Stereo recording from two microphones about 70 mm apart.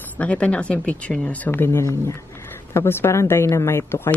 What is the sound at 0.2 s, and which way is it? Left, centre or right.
Speech, centre.